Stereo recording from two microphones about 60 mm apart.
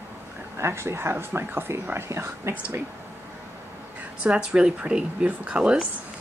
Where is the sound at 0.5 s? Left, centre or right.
Right.